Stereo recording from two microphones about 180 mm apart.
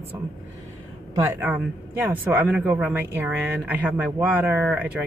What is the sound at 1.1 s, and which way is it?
Speech, 15° right (ahead or behind).